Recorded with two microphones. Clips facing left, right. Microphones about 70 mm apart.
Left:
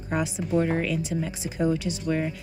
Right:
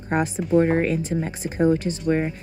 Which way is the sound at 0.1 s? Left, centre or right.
Right.